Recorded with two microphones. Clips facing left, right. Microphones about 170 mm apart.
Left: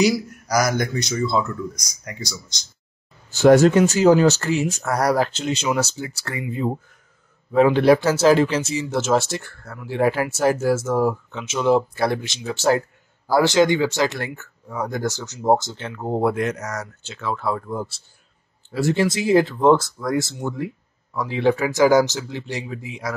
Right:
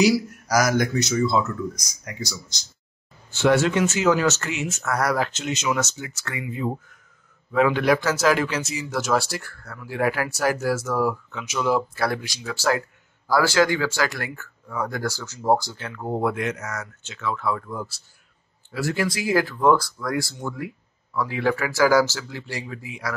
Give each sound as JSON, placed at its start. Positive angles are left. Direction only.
{"t": 0.0, "sound": "speech", "side_deg": -5}
{"t": 3.3, "sound": "speech", "side_deg": 40}